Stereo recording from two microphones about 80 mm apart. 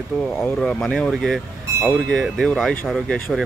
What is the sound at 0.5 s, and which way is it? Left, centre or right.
Speech, centre.